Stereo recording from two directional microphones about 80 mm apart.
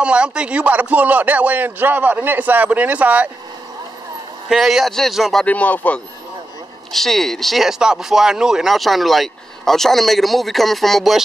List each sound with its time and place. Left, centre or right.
0.0 s speech: centre
4.5 s speech: centre
5.4 s speech: centre
6.9 s speech: centre